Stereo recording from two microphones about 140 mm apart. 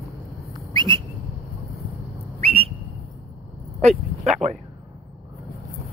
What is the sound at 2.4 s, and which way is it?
Whistle, 45° right (ahead or behind).